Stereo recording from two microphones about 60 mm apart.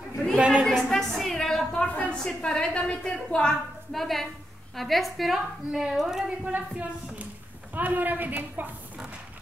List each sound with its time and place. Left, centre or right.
0.4 s a sound: centre
0.8 s a sound: centre
1.7 s a woman's voice: left
2.4 s a woman's voice: centre
3.9 s a woman's voice: centre
6.4 s a woman's voice: right